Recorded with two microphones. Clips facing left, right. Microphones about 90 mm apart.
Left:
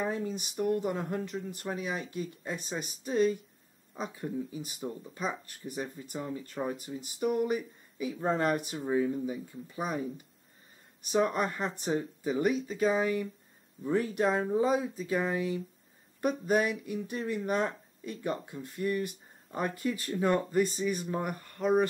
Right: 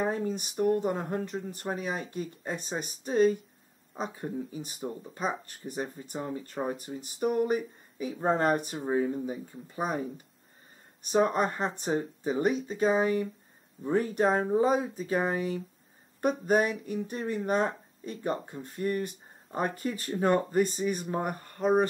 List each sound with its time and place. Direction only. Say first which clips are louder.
0.0 s speech: right 3 dB; 40° right (ahead or behind)
4.8 s speech: right 2 dB; 15° right (ahead or behind)
5.1 s speech: right 3 dB; 35° right (ahead or behind)
8.7 s speech: right 1 dB; 25° right (ahead or behind)
20.5 s speech: right 1 dB; 40° right (ahead or behind)